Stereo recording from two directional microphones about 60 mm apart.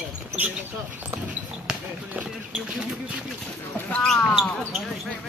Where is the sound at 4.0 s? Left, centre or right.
Centre.